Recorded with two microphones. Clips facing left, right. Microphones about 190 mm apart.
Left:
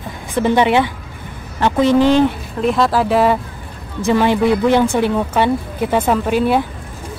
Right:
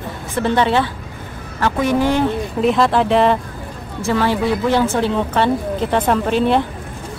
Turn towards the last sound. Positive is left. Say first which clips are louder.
# even
turn(degrees=10)  # may be behind; listen again after turning